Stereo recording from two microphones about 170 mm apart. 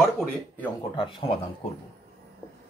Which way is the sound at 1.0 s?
30° left (ahead or behind).